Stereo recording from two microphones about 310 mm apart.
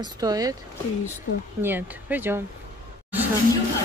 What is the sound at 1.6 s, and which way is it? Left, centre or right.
Speech, centre.